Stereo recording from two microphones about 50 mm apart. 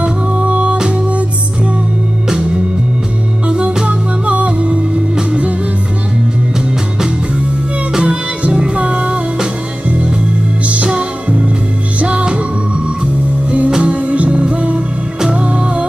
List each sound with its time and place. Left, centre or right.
0.0 s music: right
3.4 s music: right
8.0 s music: right